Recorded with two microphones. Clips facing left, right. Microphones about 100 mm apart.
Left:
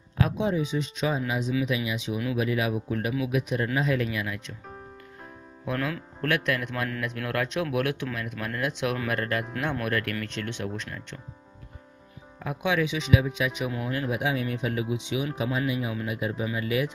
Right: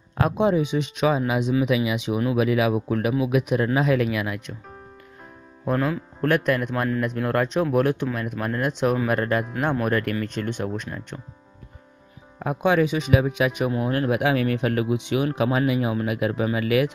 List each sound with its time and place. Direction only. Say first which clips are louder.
0.2 s speech: right 5 dB; 60° right (ahead or behind)
5.8 s speech: right 5 dB; 10° right (ahead or behind)
6.2 s speech: right 6 dB; 45° right (ahead or behind)
12.4 s speech: right 6 dB; 45° right (ahead or behind)
13.7 s speech: right 7 dB; 40° right (ahead or behind)
14.0 s speech: right 6 dB; 65° right (ahead or behind)